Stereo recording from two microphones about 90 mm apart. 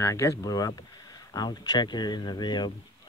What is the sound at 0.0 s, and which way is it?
Speech, 35° left (ahead or behind).